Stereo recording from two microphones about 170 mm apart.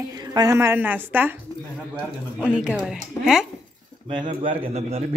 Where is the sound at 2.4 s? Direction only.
5° right (ahead or behind).